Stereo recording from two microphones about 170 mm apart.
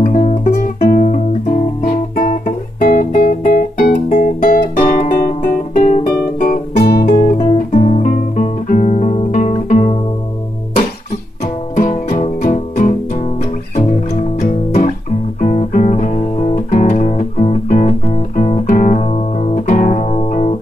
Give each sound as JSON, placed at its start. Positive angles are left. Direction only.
{"t": 0.0, "sound": "music", "side_deg": 45}
{"t": 0.8, "sound": "guitar", "side_deg": 45}
{"t": 7.5, "sound": "guitar", "side_deg": 45}
{"t": 11.7, "sound": "music", "side_deg": 45}